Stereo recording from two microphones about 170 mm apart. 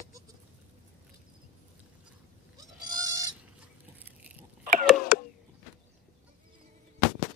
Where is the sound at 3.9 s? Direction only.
10° right (ahead or behind).